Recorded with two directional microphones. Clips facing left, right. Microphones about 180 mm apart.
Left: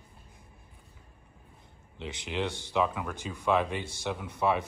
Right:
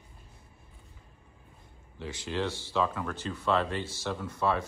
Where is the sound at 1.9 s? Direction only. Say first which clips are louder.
Right 1 dB; 20° left (ahead or behind).